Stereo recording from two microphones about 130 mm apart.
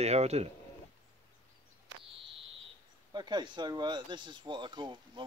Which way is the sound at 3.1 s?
35° right (ahead or behind).